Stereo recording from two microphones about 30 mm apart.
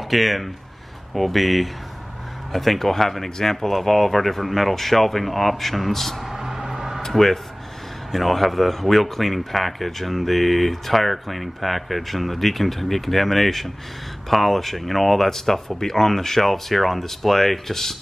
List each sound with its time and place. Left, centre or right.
0.1 s speech: centre
6.4 s a sound: centre
7.1 s speech: centre